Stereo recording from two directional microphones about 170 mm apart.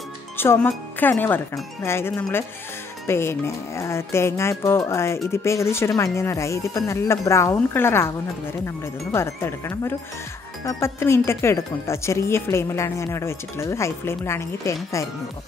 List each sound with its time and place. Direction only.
0.4 s speech: 10° left (ahead or behind)